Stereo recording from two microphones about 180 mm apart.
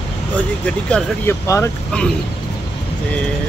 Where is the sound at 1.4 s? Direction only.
15° left (ahead or behind).